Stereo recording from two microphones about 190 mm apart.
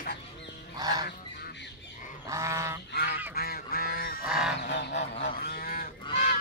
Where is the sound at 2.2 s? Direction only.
15° right (ahead or behind).